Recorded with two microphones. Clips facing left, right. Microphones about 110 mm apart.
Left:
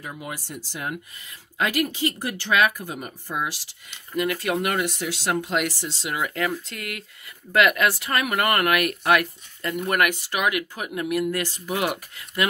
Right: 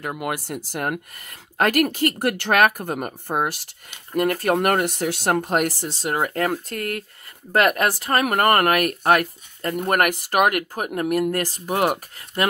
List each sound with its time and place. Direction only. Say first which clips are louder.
0.0 s speech: right 8 dB; 60° right (ahead or behind); by 12.4 s 40° right (ahead or behind)